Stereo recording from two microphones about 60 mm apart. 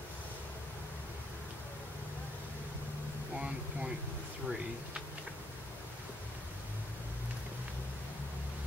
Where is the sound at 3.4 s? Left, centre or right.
Centre.